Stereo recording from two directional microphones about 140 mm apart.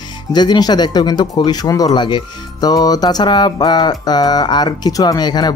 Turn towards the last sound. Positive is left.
turn(degrees=30)  # may be behind; listen again after turning